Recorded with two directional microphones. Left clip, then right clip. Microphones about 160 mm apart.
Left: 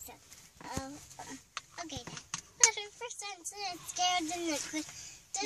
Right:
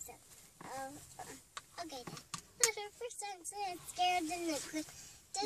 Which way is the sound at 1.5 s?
Centre (ahead or behind).